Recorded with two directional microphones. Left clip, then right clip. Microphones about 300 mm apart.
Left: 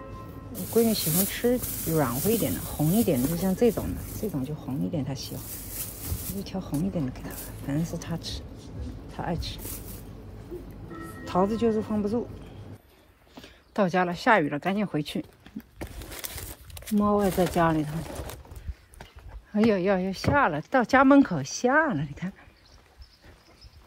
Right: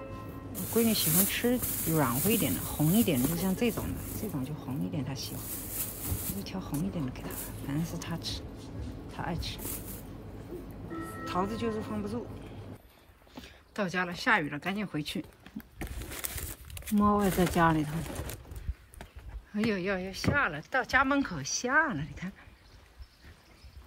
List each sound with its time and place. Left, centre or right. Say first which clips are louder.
0.7 s speech: left 5 dB; centre
1.6 s speech: left 1 dB; centre
1.9 s speech: left 3 dB; centre
11.2 s speech: left 8 dB; centre
13.3 s speech: left 3 dB; centre
15.8 s a sound: left 1 dB; centre
16.9 s speech: left 3 dB; centre
19.5 s speech: left 8 dB; centre